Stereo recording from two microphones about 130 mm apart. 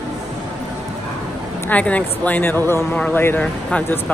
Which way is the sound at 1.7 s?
10° left (ahead or behind).